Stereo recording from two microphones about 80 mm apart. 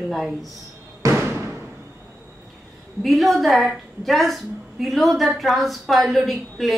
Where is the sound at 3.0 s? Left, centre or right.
Centre.